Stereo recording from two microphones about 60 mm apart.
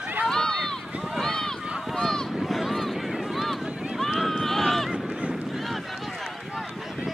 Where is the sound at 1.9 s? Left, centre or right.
Centre.